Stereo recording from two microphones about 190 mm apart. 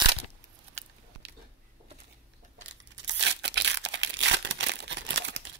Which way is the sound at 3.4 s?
65° right (ahead or behind).